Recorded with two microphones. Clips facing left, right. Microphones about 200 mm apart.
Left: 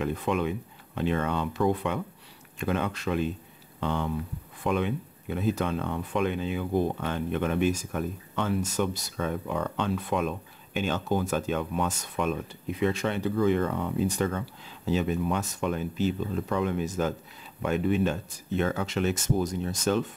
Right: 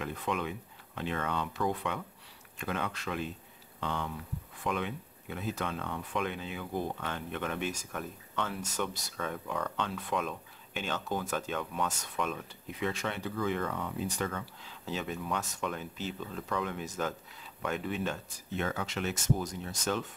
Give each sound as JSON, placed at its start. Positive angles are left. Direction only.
{"t": 0.0, "sound": "speech", "side_deg": 25}
{"t": 14.9, "sound": "speech", "side_deg": 10}
{"t": 15.1, "sound": "speech", "side_deg": 25}
{"t": 16.4, "sound": "speech", "side_deg": 25}